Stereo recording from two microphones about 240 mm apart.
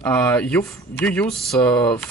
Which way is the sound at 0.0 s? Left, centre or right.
Centre.